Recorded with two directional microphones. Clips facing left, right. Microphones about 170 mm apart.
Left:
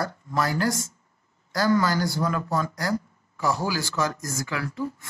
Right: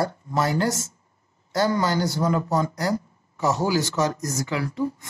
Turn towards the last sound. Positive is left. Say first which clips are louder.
# right 4 dB
turn(degrees=-20)  # may be behind; listen again after turning